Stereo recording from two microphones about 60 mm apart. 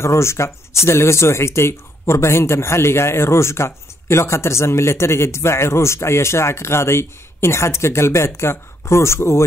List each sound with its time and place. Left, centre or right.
0.0 s speech: left